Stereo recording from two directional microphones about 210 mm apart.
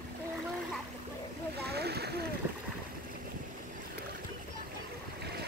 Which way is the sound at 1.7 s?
50° right (ahead or behind).